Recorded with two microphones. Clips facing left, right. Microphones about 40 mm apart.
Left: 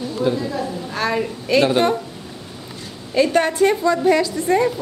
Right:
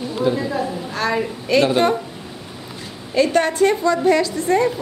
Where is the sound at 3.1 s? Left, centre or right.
Centre.